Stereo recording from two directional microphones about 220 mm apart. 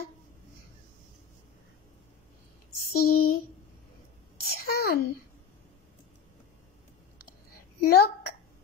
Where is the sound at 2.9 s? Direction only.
45° left (ahead or behind).